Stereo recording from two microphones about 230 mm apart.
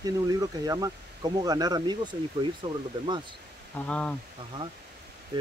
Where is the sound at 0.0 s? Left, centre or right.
Centre.